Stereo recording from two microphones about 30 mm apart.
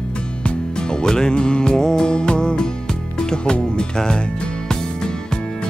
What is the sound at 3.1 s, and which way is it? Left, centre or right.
Speech, left.